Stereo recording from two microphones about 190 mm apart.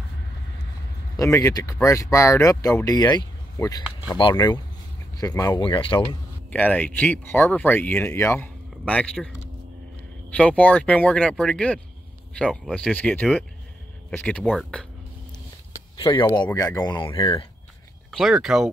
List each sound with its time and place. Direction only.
1.1 s speech: 15° left (ahead or behind)
6.5 s speech: 10° left (ahead or behind)
10.3 s speech: 5° left (ahead or behind)
16.0 s speech: 25° left (ahead or behind)
18.1 s speech: centre (ahead or behind)